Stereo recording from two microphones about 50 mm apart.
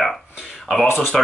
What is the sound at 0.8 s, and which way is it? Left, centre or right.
Speech, left.